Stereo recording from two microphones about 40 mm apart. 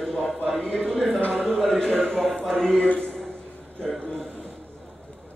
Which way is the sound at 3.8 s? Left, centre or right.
Centre.